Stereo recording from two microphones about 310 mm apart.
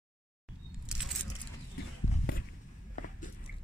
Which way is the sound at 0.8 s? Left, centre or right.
Centre.